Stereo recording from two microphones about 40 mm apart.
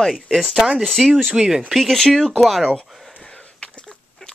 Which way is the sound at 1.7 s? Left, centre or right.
Centre.